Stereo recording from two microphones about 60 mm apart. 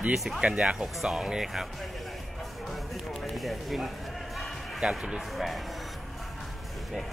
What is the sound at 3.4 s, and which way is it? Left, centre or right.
Speech, centre.